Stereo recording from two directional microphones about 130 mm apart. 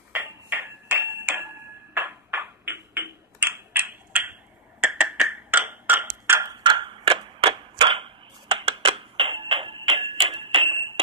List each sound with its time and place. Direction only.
0.1 s ping: 15° right (ahead or behind)
6.5 s tick-tock: 35° right (ahead or behind)